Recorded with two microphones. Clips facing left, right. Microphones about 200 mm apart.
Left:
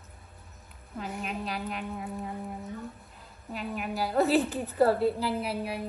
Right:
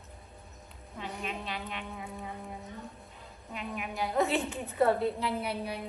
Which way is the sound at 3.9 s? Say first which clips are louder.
Left 4 dB; 35° left (ahead or behind).